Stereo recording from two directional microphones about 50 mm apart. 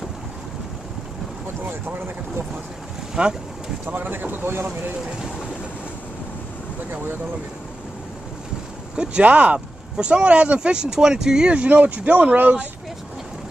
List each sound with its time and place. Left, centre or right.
1.7 s speech: right
3.2 s speech: centre
3.8 s speech: right
6.9 s speech: right
8.9 s speech: centre